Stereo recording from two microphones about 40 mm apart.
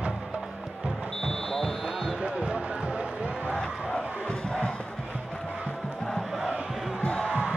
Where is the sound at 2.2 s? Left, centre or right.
Right.